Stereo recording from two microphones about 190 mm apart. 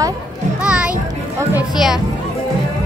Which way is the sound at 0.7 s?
5° right (ahead or behind).